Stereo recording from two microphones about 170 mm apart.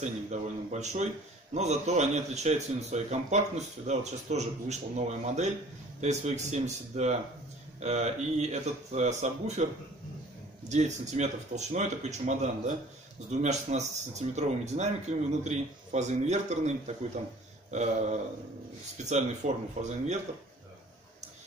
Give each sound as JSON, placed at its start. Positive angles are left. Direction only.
{"t": 0.0, "sound": "a man's voice", "side_deg": -45}
{"t": 10.7, "sound": "a man's voice", "side_deg": -45}